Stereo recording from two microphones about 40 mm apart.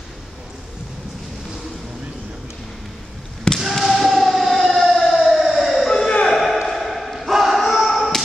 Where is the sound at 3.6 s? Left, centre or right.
Centre.